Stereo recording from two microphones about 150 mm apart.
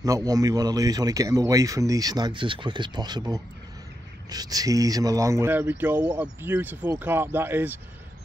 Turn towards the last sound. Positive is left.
turn(degrees=-15)  # may be behind; listen again after turning